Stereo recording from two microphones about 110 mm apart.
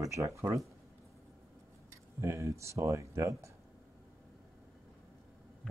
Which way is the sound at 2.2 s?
25° right (ahead or behind).